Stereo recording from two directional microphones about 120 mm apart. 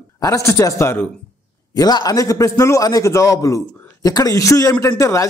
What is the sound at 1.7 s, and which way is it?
A man's voice, 30° left (ahead or behind).